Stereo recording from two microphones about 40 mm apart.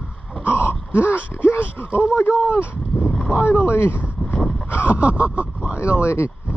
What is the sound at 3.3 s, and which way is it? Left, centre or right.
Speech, left.